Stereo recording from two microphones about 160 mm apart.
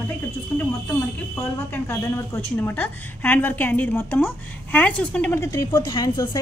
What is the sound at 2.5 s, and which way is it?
A woman's voice, 10° left (ahead or behind).